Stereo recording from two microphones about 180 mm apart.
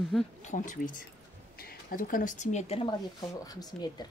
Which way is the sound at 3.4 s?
20° left (ahead or behind).